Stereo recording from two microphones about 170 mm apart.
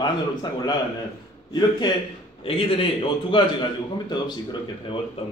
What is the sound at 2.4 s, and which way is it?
A man's voice, 30° left (ahead or behind).